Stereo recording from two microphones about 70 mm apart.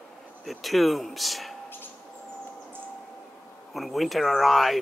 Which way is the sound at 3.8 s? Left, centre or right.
Centre.